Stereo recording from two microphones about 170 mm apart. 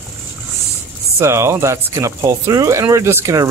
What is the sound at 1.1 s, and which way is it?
Speech, 15° right (ahead or behind).